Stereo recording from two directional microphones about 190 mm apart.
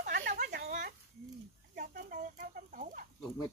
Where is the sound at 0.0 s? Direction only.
45° right (ahead or behind).